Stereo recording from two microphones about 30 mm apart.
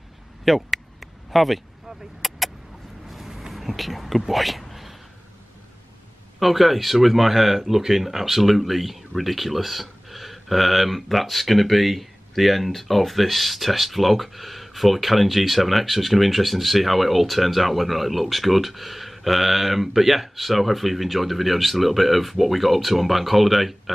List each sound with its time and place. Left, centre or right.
0.5 s a sound: centre
1.3 s speech: centre
2.2 s vehicle: centre
3.3 s vehicle: centre
3.5 s speech: centre
4.3 s a sound: centre
6.4 s speech: centre